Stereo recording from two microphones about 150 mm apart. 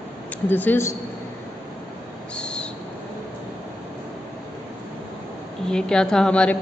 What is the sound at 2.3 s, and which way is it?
Owl, 5° left (ahead or behind).